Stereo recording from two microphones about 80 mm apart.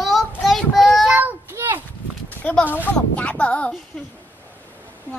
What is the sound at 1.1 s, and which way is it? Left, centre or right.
Child singing, right.